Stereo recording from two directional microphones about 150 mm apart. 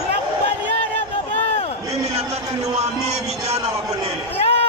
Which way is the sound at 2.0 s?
45° right (ahead or behind).